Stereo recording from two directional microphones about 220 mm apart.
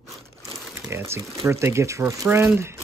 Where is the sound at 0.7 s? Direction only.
10° right (ahead or behind).